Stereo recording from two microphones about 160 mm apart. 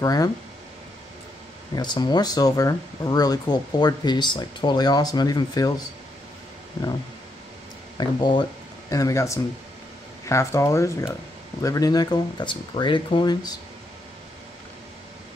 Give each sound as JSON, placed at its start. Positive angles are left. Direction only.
{"t": 0.0, "sound": "speech", "side_deg": 20}
{"t": 1.8, "sound": "speech", "side_deg": 25}
{"t": 8.0, "sound": "speech", "side_deg": 30}
{"t": 8.9, "sound": "speech", "side_deg": 20}